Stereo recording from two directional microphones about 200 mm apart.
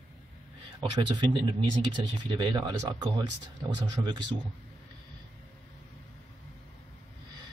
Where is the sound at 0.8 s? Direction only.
25° right (ahead or behind).